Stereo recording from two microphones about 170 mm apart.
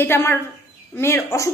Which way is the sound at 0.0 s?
15° left (ahead or behind).